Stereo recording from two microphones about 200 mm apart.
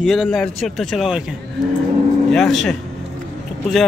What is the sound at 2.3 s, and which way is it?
Speech, centre (ahead or behind).